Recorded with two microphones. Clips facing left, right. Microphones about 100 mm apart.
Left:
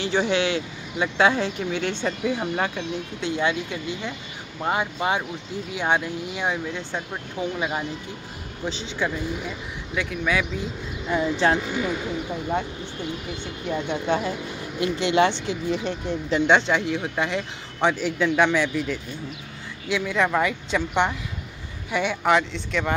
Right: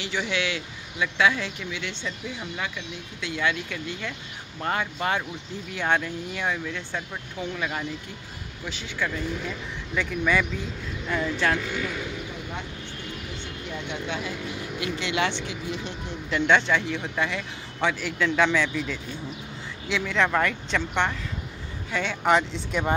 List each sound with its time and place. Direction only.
0.0 s speech: 35° left (ahead or behind); by 2.9 s 50° left (ahead or behind)
3.2 s speech: 25° left (ahead or behind); by 10.4 s 5° left (ahead or behind)
11.1 s speech: 20° left (ahead or behind)
13.7 s speech: 40° left (ahead or behind); by 21.1 s 10° left (ahead or behind)
22.2 s speech: centre (ahead or behind)